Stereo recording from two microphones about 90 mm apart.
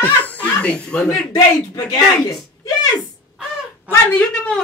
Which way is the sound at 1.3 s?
45° left (ahead or behind).